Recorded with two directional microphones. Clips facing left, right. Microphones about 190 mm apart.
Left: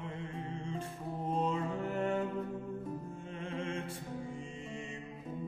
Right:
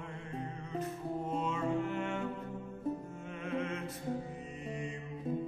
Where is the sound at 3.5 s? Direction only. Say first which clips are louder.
Right 2 dB; 30° left (ahead or behind).